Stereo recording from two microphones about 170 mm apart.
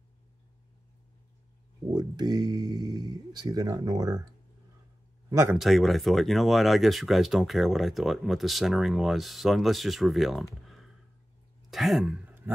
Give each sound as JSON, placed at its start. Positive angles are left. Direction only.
{"t": 1.9, "sound": "speech", "side_deg": -25}
{"t": 5.3, "sound": "a man's voice", "side_deg": -15}
{"t": 5.6, "sound": "a man's voice", "side_deg": 0}